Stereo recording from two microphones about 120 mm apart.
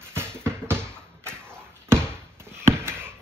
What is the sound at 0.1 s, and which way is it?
Music, 20° right (ahead or behind).